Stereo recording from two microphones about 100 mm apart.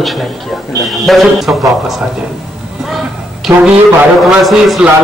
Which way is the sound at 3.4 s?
Centre (ahead or behind).